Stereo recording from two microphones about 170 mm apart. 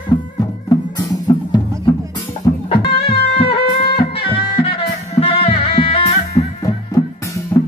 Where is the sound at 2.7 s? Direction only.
35° left (ahead or behind).